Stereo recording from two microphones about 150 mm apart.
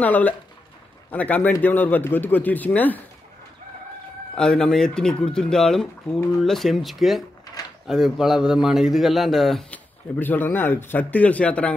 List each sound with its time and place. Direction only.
0.0 s speech: 10° left (ahead or behind)
4.4 s speech: 5° left (ahead or behind)